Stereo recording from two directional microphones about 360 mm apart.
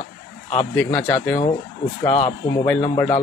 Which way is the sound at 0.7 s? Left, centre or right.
Centre.